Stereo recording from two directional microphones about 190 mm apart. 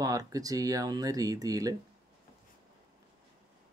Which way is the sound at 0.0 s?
20° right (ahead or behind).